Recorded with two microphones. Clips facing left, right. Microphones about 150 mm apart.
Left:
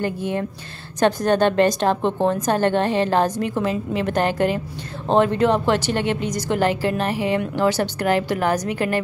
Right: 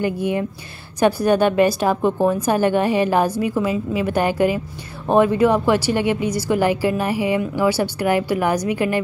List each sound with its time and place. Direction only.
0.0 s a woman's voice: 10° right (ahead or behind)